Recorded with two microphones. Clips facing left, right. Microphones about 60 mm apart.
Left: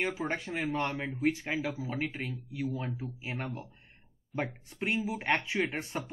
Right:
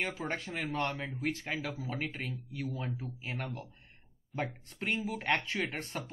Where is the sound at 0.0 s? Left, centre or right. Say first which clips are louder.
Left 3 dB; centre.